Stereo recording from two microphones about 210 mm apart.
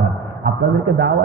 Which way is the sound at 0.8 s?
55° right (ahead or behind).